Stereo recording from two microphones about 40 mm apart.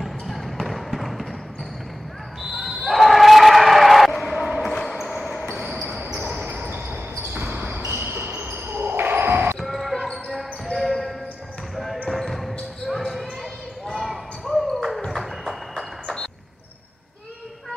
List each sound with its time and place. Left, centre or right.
0.0 s basketball bounce: centre
2.5 s basketball bounce: centre
4.1 s crowd: centre
5.0 s basketball bounce: centre
6.1 s basketball bounce: right
8.0 s basketball bounce: right
8.4 s basketball bounce: right
9.6 s basketball bounce: centre
15.0 s a sound: centre